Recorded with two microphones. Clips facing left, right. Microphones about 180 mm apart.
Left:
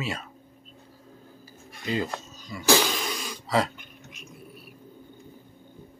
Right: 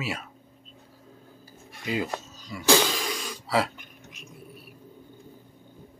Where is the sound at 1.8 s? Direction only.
10° right (ahead or behind).